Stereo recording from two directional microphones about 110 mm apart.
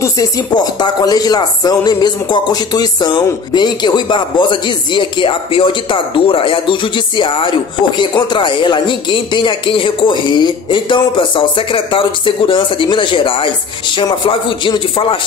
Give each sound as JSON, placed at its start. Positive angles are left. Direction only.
{"t": 0.7, "sound": "speech", "side_deg": 40}